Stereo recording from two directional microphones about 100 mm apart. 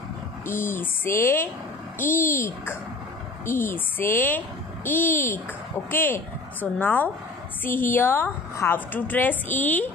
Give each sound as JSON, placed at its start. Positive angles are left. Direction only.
{"t": 0.5, "sound": "a woman's voice", "side_deg": 25}